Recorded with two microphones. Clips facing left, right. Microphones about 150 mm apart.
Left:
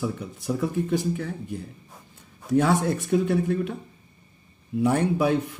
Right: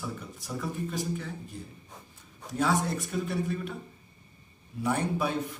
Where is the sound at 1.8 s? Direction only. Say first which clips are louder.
Left 1 dB; 5° left (ahead or behind).